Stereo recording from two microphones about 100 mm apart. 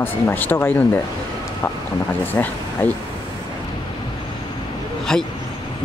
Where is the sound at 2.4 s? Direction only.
25° left (ahead or behind).